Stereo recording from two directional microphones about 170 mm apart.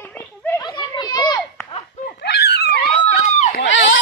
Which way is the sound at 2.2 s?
75° left (ahead or behind).